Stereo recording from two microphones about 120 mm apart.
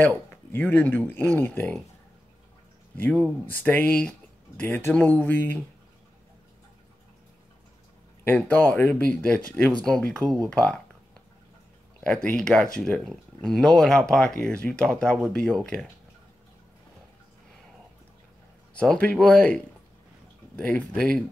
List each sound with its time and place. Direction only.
0.5 s speech: 15° left (ahead or behind)
3.0 s speech: 10° left (ahead or behind)
8.2 s speech: 15° left (ahead or behind)
12.0 s speech: 10° left (ahead or behind)
18.8 s speech: 10° left (ahead or behind)